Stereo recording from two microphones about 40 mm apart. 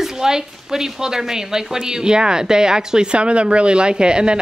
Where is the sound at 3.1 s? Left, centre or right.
Right.